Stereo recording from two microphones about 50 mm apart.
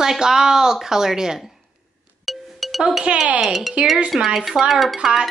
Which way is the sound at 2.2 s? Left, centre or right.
Centre.